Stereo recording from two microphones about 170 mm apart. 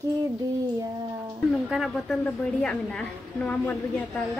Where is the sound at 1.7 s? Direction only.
Centre (ahead or behind).